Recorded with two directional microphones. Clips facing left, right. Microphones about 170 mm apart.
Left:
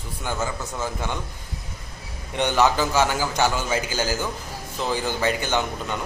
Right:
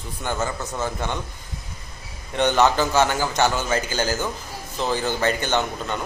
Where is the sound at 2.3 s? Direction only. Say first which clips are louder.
Right 2 dB; 10° left (ahead or behind).